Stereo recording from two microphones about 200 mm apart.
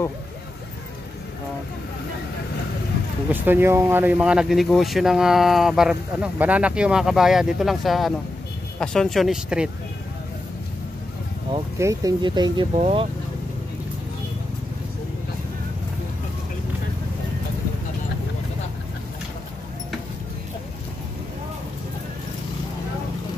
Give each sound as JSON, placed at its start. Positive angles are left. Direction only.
{"t": 3.3, "sound": "speech", "side_deg": -10}
{"t": 11.8, "sound": "speech", "side_deg": -15}